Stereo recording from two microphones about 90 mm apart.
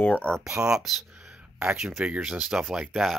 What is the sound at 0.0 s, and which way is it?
Speech, 20° left (ahead or behind).